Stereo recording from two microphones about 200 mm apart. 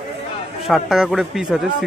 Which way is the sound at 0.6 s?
Centre (ahead or behind).